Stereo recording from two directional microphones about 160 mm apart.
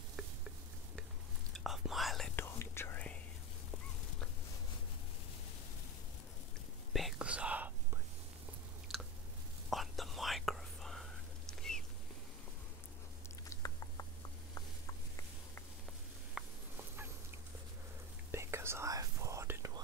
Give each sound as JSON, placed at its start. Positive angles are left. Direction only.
{"t": 1.5, "sound": "whispering", "side_deg": 0}
{"t": 2.3, "sound": "whispering", "side_deg": 15}
{"t": 6.9, "sound": "whispering", "side_deg": 0}
{"t": 9.7, "sound": "whispering", "side_deg": 0}
{"t": 13.5, "sound": "a sound", "side_deg": 20}
{"t": 16.4, "sound": "fowl", "side_deg": -5}
{"t": 18.3, "sound": "whispering", "side_deg": -15}